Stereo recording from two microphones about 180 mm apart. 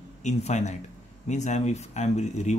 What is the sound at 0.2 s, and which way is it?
Speech, 40° left (ahead or behind).